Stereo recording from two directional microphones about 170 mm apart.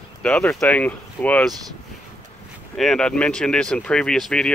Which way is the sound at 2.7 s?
5° left (ahead or behind).